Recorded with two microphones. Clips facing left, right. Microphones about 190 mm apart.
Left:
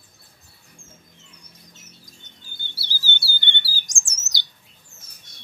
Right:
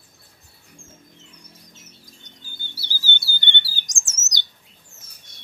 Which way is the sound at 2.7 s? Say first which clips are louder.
Right 1 dB; 15° right (ahead or behind).